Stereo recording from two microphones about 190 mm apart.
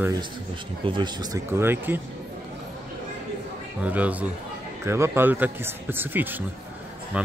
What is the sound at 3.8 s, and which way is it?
Speech, 10° right (ahead or behind).